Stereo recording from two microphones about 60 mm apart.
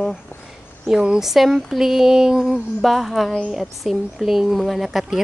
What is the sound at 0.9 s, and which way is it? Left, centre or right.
Speech, centre.